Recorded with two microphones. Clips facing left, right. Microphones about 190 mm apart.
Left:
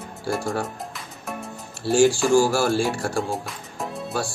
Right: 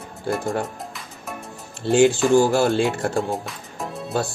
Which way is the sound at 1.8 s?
20° right (ahead or behind).